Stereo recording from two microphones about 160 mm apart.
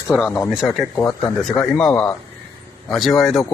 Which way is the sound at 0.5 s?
Centre (ahead or behind).